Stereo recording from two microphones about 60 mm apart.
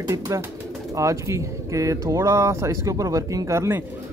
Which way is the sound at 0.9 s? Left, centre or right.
Right.